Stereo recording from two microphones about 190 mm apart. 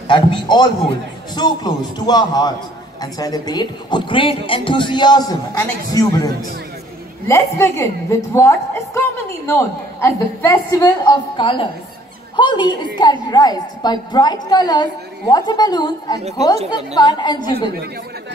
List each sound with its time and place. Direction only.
0.1 s a woman's voice: 25° left (ahead or behind)